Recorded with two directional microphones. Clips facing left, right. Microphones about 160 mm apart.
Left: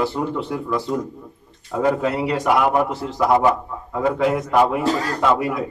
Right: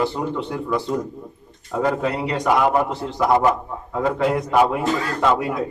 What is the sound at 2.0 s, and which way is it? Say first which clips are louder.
A man's voice: left 2 dB; 5° left (ahead or behind).